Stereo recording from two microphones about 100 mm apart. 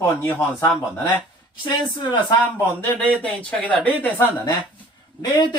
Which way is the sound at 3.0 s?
10° left (ahead or behind).